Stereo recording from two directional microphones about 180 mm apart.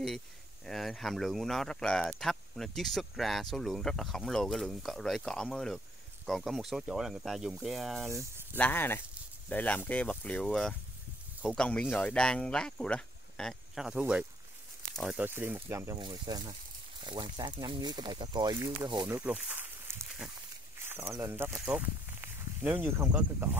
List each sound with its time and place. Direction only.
0.7 s speech: centre (ahead or behind)
8.1 s speech: 15° right (ahead or behind)
8.5 s speech: 10° left (ahead or behind); by 16.0 s 15° right (ahead or behind)
16.0 s speech: 25° right (ahead or behind)
19.0 s speech: 10° right (ahead or behind)